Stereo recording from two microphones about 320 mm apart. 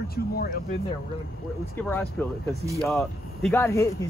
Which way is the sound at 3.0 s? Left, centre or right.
Centre.